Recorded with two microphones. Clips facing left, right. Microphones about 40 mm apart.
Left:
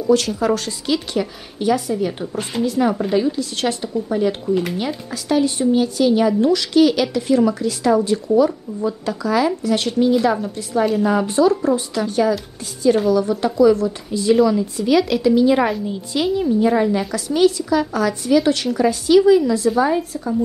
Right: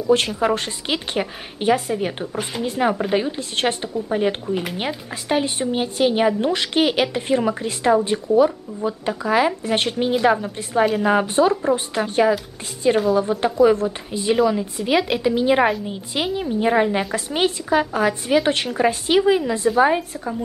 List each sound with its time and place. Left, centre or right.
0.1 s a woman's voice: right